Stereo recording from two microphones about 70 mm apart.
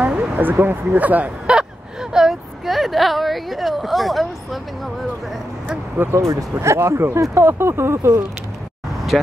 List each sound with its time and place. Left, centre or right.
0.0 s speech: centre
2.1 s a woman's voice: centre
6.1 s speech: right
9.1 s speech: centre